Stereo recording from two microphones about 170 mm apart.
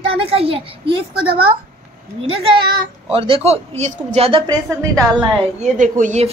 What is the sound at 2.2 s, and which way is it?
A woman's voice, 30° right (ahead or behind).